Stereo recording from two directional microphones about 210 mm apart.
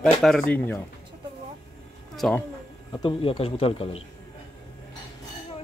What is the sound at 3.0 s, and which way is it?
Speech, 25° left (ahead or behind).